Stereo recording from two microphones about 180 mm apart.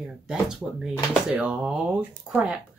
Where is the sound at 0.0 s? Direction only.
5° right (ahead or behind).